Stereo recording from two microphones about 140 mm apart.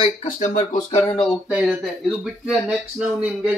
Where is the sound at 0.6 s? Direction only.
25° left (ahead or behind).